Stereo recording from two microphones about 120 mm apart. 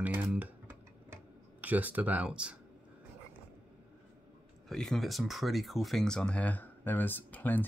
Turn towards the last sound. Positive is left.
turn(degrees=15)  # may be behind; listen again after turning